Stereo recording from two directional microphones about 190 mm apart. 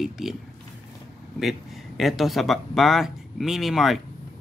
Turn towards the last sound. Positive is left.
turn(degrees=0)  # may be behind; listen again after turning